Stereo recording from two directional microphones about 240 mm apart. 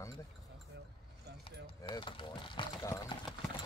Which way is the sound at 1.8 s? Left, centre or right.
Left.